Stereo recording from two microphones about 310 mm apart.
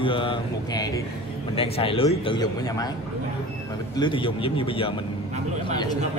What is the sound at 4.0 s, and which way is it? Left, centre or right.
Speech, centre.